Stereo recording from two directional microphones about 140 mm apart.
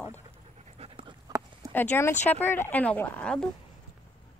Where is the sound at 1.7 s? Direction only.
15° left (ahead or behind).